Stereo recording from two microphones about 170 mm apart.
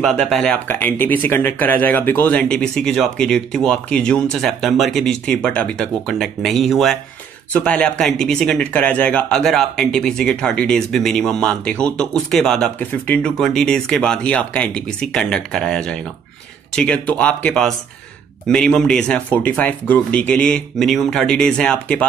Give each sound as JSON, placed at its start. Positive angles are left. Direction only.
{"t": 0.0, "sound": "speech", "side_deg": 0}